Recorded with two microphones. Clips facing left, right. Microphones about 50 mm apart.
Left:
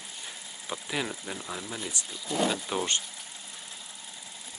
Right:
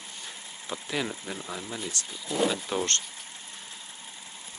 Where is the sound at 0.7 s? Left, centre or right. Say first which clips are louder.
Right 1 dB; centre.